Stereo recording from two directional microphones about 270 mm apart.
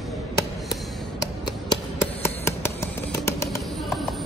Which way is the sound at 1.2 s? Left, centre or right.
Centre.